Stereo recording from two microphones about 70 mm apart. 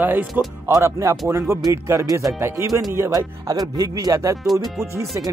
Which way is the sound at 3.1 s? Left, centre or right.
Right.